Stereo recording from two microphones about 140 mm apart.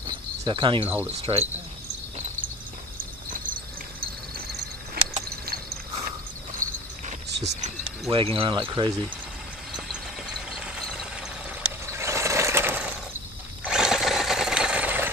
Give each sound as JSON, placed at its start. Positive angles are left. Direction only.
{"t": 0.0, "sound": "cricket", "side_deg": -35}
{"t": 0.8, "sound": "cricket", "side_deg": -10}
{"t": 1.2, "sound": "cricket", "side_deg": -50}
{"t": 2.1, "sound": "cricket", "side_deg": -60}
{"t": 3.3, "sound": "cricket", "side_deg": -80}
{"t": 5.0, "sound": "a sound", "side_deg": -90}
{"t": 6.6, "sound": "cricket", "side_deg": -60}
{"t": 8.1, "sound": "speech", "side_deg": -40}
{"t": 10.5, "sound": "a sound", "side_deg": -5}
{"t": 11.8, "sound": "a sound", "side_deg": -20}
{"t": 13.7, "sound": "sewing machine", "side_deg": -5}